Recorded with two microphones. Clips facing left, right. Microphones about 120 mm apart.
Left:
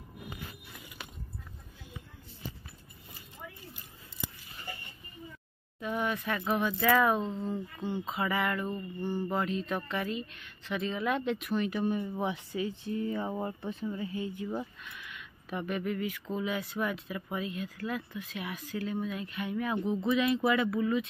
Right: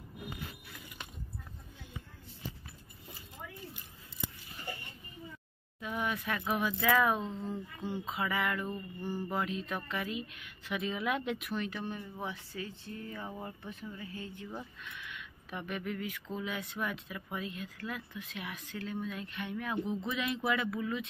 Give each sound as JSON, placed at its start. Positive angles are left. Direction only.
{"t": 5.8, "sound": "speech", "side_deg": 0}
{"t": 13.4, "sound": "speech", "side_deg": 30}
{"t": 14.1, "sound": "speech", "side_deg": 10}